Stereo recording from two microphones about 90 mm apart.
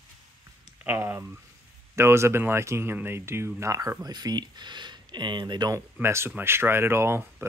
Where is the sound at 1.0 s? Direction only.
30° right (ahead or behind); by 5.7 s 55° right (ahead or behind).